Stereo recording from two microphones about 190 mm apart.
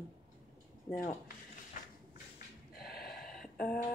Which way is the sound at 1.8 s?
40° left (ahead or behind).